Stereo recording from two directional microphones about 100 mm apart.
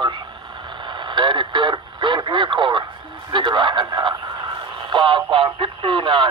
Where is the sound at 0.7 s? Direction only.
50° right (ahead or behind).